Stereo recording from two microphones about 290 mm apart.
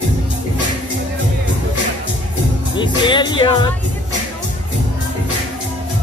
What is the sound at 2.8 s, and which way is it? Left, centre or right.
Music, centre.